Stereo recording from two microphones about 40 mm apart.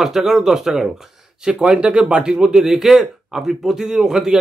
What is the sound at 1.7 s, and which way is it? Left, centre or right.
Speech, right.